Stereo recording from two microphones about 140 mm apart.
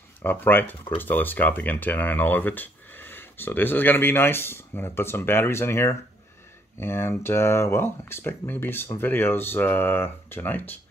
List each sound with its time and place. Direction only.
0.2 s speech: 15° left (ahead or behind)